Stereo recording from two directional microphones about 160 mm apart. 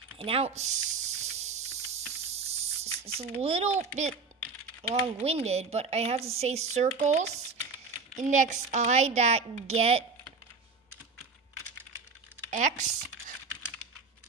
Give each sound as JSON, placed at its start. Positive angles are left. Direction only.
{"t": 0.2, "sound": "a sound", "side_deg": -40}
{"t": 3.1, "sound": "a woman's voice", "side_deg": -40}
{"t": 12.4, "sound": "speech", "side_deg": -50}